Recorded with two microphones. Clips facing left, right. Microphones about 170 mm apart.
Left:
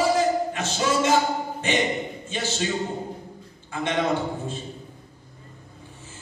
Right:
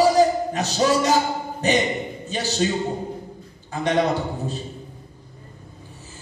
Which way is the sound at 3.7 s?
40° right (ahead or behind).